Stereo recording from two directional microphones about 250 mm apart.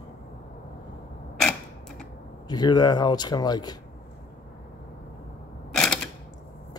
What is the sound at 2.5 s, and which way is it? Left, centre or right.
Speech, centre.